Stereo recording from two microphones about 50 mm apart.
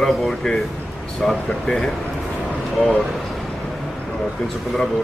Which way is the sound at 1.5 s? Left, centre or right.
Centre.